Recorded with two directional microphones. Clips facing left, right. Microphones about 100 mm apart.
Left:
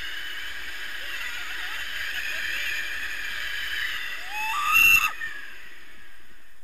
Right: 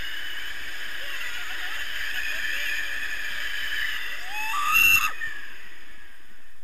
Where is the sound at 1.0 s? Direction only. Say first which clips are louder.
Even; 40° right (ahead or behind).